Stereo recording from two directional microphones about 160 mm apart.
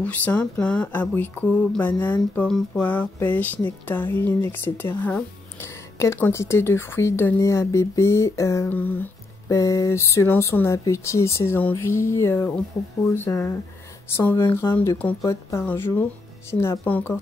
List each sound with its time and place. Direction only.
0.0 s speech: 10° left (ahead or behind)